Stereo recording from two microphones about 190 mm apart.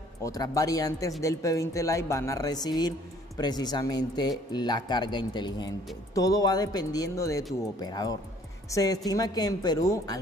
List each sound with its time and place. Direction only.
0.2 s a woman's voice: 20° left (ahead or behind)